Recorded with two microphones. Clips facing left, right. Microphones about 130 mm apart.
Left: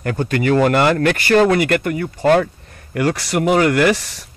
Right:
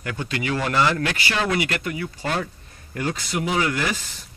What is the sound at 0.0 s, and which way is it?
Speech, 45° left (ahead or behind).